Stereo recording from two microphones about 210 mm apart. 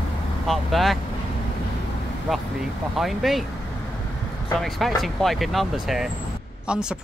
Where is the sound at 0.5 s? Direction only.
Centre (ahead or behind).